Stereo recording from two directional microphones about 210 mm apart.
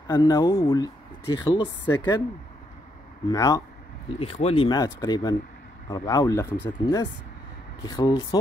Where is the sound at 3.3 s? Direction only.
15° left (ahead or behind).